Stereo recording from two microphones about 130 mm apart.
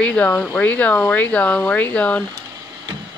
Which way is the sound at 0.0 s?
10° left (ahead or behind).